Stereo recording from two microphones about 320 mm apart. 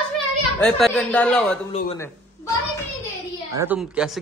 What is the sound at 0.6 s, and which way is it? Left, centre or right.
Speech, centre.